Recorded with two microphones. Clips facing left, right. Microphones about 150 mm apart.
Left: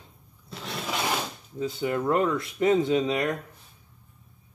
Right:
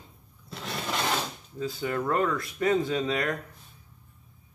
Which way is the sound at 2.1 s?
25° left (ahead or behind).